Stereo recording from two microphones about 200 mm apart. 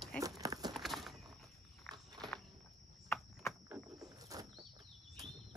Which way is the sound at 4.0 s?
20° right (ahead or behind).